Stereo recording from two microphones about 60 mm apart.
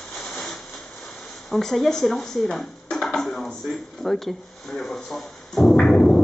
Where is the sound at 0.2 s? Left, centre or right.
Centre.